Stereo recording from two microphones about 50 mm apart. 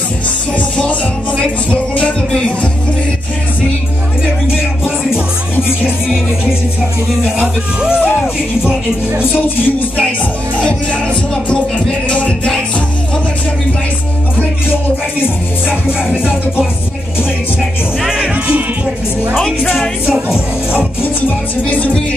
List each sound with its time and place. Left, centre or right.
0.6 s music: left
4.6 s music: centre
7.3 s speech: centre
9.2 s music: left
12.1 s music: left
15.7 s music: centre
18.1 s music: right
20.1 s speech: centre